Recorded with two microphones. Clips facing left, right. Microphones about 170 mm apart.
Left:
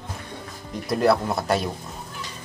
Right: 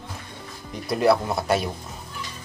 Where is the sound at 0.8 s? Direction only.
Centre (ahead or behind).